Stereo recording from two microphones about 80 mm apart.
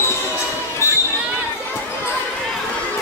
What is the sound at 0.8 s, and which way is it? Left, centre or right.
Basketball bounce, left.